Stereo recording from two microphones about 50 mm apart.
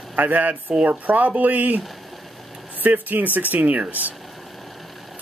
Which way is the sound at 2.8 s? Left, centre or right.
Right.